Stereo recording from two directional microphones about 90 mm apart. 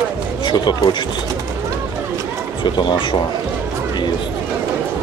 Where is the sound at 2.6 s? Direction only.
60° left (ahead or behind).